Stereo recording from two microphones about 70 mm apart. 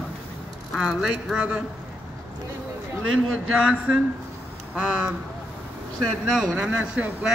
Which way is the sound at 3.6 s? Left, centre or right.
Centre.